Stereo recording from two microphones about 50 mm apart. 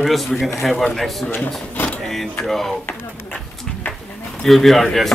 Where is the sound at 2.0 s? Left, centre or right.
Centre.